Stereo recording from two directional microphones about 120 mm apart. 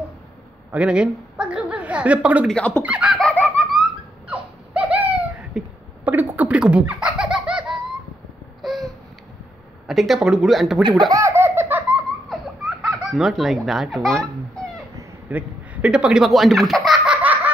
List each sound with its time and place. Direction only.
0.7 s a woman's voice: 10° right (ahead or behind)
2.4 s speech: 10° left (ahead or behind)
2.8 s a woman's voice: 10° right (ahead or behind)
3.2 s belly laugh: 5° left (ahead or behind)
4.3 s a sound: 10° right (ahead or behind)
6.0 s laughter: 15° right (ahead or behind)
8.6 s a sound: centre (ahead or behind)
9.8 s speech: centre (ahead or behind)
11.1 s baby laughter: 25° right (ahead or behind)
12.3 s baby laughter: centre (ahead or behind)
15.2 s a sound: 10° right (ahead or behind)